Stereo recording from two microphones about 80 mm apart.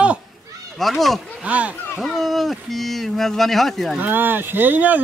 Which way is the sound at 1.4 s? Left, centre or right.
Centre.